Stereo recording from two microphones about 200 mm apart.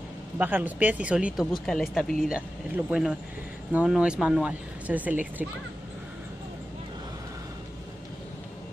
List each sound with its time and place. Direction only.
0.4 s speech: 10° right (ahead or behind)